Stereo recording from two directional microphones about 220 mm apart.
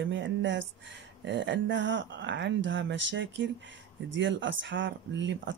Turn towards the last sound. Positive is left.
turn(degrees=-55)  # may be behind; listen again after turning